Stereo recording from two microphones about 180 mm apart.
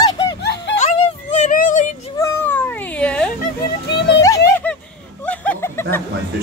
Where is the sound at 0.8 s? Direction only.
40° left (ahead or behind).